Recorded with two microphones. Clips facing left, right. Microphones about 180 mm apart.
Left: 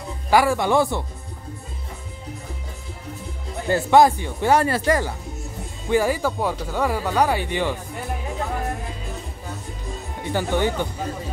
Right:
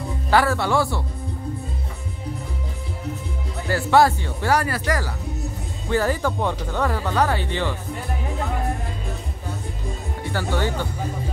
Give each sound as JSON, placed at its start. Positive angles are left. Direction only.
{"t": 0.3, "sound": "speech", "side_deg": 15}
{"t": 3.6, "sound": "speech", "side_deg": 20}
{"t": 5.9, "sound": "speech", "side_deg": 10}
{"t": 10.3, "sound": "speech", "side_deg": 15}